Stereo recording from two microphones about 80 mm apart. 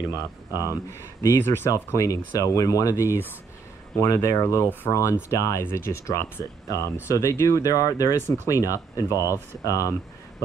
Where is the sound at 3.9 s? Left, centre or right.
Left.